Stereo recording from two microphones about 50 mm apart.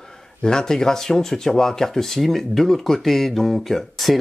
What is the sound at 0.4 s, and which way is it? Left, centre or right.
Speech, centre.